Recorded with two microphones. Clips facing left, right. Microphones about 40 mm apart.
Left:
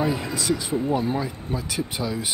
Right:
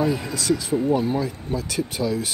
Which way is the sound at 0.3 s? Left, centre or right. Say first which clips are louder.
Right 2 dB; centre.